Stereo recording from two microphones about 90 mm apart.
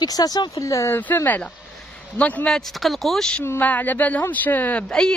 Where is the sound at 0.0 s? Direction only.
45° left (ahead or behind).